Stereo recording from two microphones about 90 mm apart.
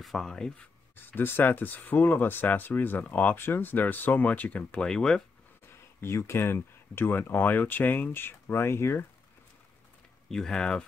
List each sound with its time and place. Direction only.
0.0 s speech: centre (ahead or behind)
0.9 s speech: 20° left (ahead or behind)
5.7 s speech: 30° left (ahead or behind)
10.2 s speech: 5° left (ahead or behind)